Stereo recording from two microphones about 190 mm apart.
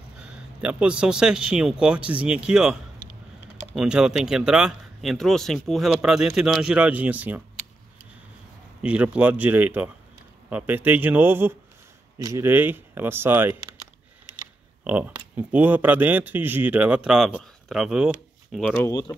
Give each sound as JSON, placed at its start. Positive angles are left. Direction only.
{"t": 0.2, "sound": "speech", "side_deg": -5}
{"t": 3.0, "sound": "a sound", "side_deg": 45}
{"t": 3.7, "sound": "speech", "side_deg": -5}
{"t": 8.8, "sound": "a man's voice", "side_deg": -5}
{"t": 14.9, "sound": "a man's voice", "side_deg": -10}
{"t": 18.8, "sound": "speech", "side_deg": 20}